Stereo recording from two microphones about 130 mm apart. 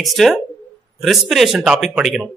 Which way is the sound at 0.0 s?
Centre (ahead or behind).